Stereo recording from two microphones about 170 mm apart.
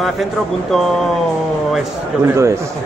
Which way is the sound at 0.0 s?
Centre (ahead or behind).